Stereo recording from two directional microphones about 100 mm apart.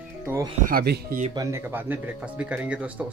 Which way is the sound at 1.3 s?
35° right (ahead or behind).